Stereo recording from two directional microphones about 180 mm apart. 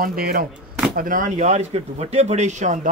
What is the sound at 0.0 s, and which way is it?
A man's voice, 55° right (ahead or behind).